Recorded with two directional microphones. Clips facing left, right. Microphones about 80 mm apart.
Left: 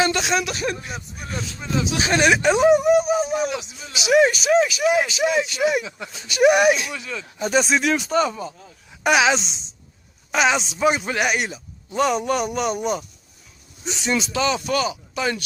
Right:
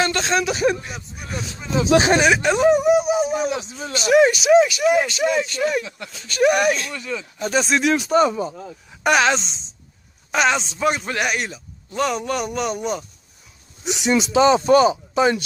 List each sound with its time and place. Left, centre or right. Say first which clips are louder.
0.0 s speech: right 1 dB; centre
3.4 s speech: right 3 dB; right
3.9 s speech: right 2 dB; centre
8.3 s speech: right 5 dB; right
9.0 s speech: even; centre
13.8 s speech: right 4 dB; centre